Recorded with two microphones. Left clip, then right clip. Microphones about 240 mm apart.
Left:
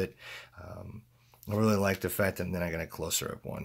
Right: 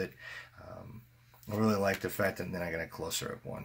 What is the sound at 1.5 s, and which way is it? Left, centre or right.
Speech, left.